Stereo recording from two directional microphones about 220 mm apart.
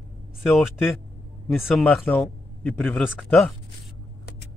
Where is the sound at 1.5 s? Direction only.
Centre (ahead or behind).